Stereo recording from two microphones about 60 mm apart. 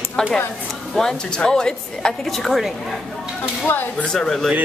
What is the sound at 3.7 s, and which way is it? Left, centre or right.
Speech, left.